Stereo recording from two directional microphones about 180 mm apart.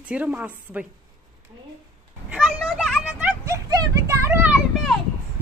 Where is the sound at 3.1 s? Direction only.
20° right (ahead or behind).